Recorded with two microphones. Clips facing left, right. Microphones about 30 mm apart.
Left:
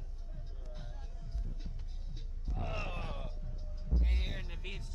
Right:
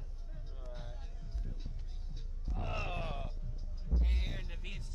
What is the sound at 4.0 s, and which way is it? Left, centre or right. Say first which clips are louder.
Heart sounds: left 1 dB; centre.